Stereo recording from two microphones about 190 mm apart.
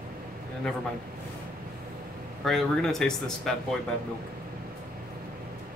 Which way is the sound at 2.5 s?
Centre (ahead or behind).